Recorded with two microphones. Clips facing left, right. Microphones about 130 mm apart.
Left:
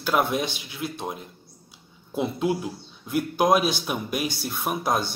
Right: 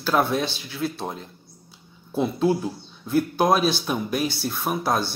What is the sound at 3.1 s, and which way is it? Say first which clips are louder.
Speech: right 1 dB; 15° left (ahead or behind).